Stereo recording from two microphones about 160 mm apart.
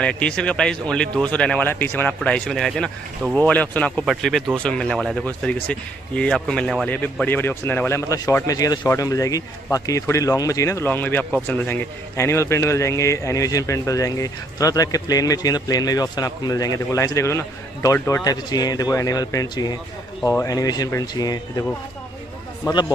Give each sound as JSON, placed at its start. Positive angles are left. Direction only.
{"t": 0.0, "sound": "a man's voice", "side_deg": 5}